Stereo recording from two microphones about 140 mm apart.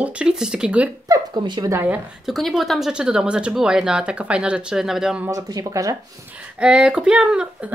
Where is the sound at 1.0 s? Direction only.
25° right (ahead or behind).